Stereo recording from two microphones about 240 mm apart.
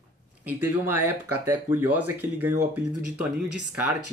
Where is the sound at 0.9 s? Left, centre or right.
Right.